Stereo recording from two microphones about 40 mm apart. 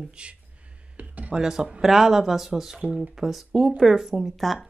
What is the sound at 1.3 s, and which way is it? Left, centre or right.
Speech, centre.